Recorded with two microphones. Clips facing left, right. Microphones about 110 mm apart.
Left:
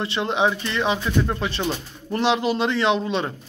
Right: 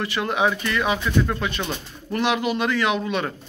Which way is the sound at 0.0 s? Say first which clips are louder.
Left 1 dB; 25° left (ahead or behind).